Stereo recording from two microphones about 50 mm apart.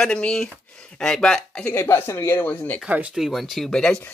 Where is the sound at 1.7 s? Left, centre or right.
Left.